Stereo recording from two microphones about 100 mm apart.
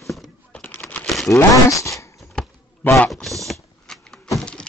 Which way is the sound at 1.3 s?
30° left (ahead or behind).